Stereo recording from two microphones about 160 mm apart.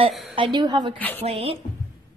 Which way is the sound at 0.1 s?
Centre (ahead or behind).